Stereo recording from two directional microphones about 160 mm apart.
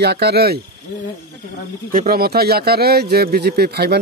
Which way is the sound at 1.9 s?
65° right (ahead or behind).